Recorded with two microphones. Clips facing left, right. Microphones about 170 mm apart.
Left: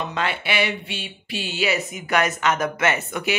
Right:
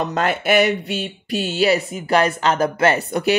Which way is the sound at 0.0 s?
45° right (ahead or behind).